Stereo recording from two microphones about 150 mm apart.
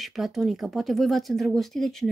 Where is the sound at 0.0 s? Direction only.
Centre (ahead or behind).